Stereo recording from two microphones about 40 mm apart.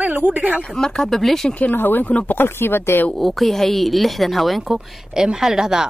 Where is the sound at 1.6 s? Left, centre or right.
Left.